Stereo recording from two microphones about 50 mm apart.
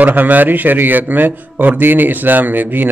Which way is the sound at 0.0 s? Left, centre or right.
Right.